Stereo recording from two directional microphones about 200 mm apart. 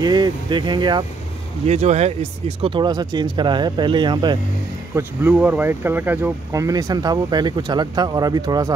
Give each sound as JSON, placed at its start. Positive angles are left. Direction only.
{"t": 0.0, "sound": "speech", "side_deg": -20}
{"t": 1.7, "sound": "speech", "side_deg": -35}
{"t": 4.9, "sound": "speech", "side_deg": -10}